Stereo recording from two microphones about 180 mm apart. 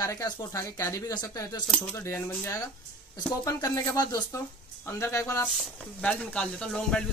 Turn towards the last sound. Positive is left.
turn(degrees=5)  # may be behind; listen again after turning